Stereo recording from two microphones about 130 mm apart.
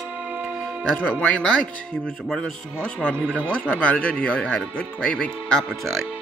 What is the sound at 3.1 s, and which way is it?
Speech, 15° right (ahead or behind).